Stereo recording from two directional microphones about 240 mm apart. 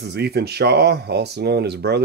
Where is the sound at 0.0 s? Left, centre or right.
Right.